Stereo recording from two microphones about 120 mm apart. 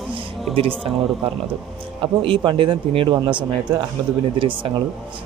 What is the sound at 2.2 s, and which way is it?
Speech, 45° right (ahead or behind).